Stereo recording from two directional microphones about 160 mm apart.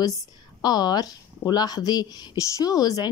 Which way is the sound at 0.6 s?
25° left (ahead or behind).